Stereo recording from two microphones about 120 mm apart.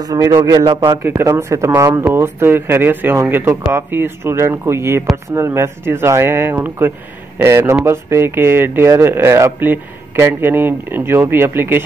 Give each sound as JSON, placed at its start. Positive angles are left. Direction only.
{"t": 0.0, "sound": "a man's voice", "side_deg": -30}
{"t": 1.0, "sound": "speech", "side_deg": -25}